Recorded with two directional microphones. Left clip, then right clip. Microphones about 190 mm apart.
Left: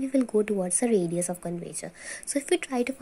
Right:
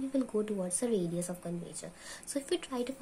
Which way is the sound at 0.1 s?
30° left (ahead or behind).